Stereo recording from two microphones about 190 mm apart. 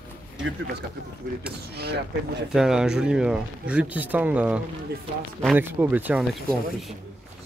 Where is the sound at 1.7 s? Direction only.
60° right (ahead or behind).